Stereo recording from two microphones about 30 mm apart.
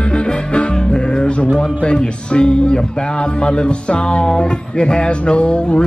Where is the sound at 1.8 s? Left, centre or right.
Left.